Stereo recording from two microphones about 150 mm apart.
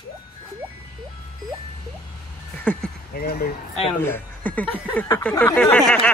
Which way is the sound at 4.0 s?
15° left (ahead or behind).